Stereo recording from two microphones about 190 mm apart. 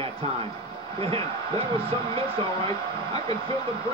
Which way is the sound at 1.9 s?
30° right (ahead or behind).